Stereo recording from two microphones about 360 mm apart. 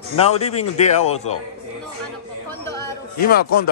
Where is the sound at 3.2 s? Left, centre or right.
Left.